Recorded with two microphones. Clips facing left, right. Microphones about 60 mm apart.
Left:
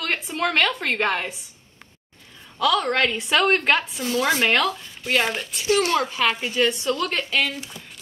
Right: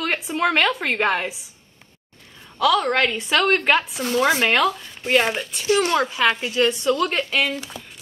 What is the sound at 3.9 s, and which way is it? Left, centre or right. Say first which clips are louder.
Speech: right 2 dB; right.